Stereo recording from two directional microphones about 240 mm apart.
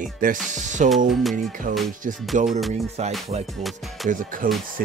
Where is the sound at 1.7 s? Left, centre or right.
Right.